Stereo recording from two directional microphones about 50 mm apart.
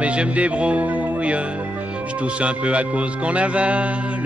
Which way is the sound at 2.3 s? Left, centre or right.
Right.